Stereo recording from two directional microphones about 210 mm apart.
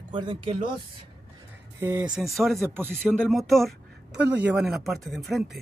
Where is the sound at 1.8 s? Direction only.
10° right (ahead or behind).